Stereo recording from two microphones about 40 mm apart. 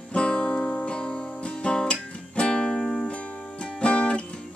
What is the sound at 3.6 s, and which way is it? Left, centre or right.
Music, left.